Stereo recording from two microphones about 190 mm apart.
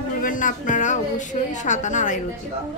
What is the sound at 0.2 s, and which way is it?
Speech, 45° left (ahead or behind).